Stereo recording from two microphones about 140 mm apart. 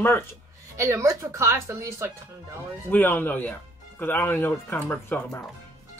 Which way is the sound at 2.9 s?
15° left (ahead or behind).